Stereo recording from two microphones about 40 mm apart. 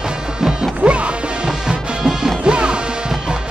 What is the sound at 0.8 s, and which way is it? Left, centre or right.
Music, right.